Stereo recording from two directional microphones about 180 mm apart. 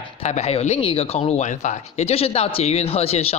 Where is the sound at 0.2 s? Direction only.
35° left (ahead or behind).